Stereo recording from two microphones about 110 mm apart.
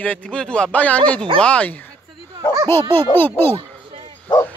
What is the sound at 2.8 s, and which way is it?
Speech, 50° right (ahead or behind).